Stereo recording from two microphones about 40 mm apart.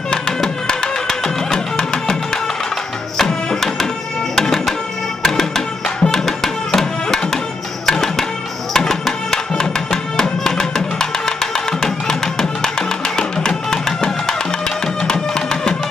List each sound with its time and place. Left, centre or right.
0.1 s music: centre
6.0 s music: centre